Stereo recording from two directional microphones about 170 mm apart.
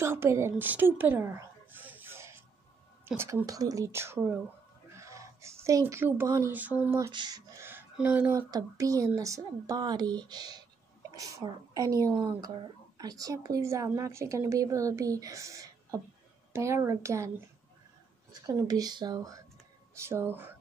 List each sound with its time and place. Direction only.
0.0 s a sound: 15° right (ahead or behind)
3.1 s speech: 10° right (ahead or behind)
7.1 s speech: 25° right (ahead or behind)
8.4 s speech: 20° right (ahead or behind)
18.4 s speech: 20° right (ahead or behind)